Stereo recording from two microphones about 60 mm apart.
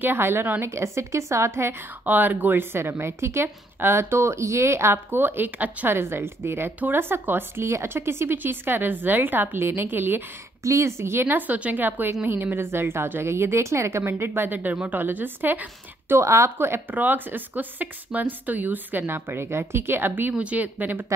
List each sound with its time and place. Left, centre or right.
0.0 s a woman's voice: right
0.7 s a woman's voice: right
2.0 s a woman's voice: right
5.9 s a woman's voice: right
10.6 s a woman's voice: right
11.3 s a woman's voice: right
16.2 s a woman's voice: right
16.5 s a woman's voice: right
16.9 s a woman's voice: right
20.3 s speech: right